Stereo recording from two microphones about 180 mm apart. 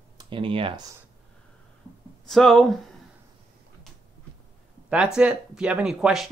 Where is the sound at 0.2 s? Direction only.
30° right (ahead or behind).